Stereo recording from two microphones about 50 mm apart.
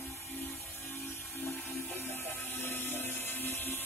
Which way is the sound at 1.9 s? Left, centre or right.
Left.